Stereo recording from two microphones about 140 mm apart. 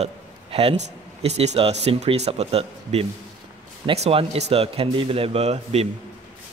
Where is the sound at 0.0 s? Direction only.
45° right (ahead or behind).